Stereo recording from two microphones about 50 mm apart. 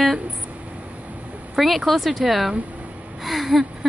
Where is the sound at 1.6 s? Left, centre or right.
Centre.